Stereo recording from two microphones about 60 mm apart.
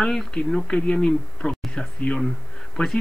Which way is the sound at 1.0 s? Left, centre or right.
Centre.